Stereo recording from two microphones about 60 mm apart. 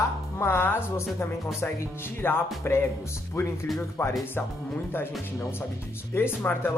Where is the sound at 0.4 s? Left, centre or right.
Left.